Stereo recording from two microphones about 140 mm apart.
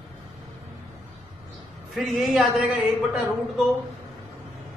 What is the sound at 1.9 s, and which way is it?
Speech, centre (ahead or behind).